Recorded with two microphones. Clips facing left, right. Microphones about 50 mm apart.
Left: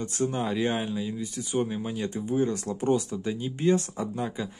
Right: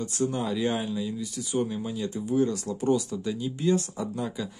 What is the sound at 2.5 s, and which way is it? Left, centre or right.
Speech, left.